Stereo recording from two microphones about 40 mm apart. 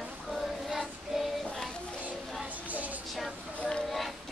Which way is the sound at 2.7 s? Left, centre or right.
Right.